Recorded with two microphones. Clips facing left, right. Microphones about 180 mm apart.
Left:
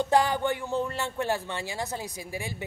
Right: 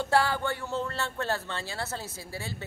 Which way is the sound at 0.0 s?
15° left (ahead or behind).